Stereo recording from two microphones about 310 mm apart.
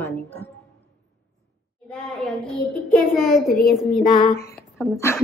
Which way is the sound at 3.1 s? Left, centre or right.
Centre.